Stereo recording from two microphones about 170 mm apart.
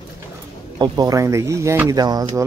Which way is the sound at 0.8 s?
20° right (ahead or behind).